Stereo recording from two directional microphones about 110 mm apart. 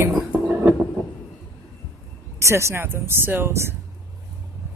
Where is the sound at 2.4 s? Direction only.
25° right (ahead or behind).